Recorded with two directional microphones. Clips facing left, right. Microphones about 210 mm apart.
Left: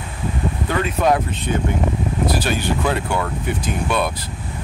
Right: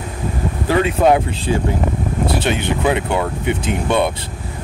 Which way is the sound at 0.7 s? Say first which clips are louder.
Right 5 dB; 30° right (ahead or behind).